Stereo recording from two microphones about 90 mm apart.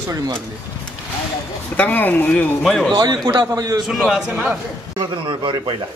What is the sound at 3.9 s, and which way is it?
Speech, 10° right (ahead or behind).